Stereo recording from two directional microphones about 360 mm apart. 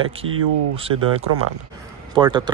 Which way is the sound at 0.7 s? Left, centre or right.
Centre.